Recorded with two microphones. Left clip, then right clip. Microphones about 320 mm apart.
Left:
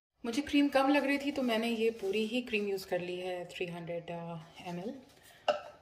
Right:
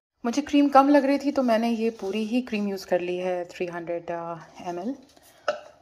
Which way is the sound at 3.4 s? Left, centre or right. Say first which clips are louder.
Right 9 dB; right.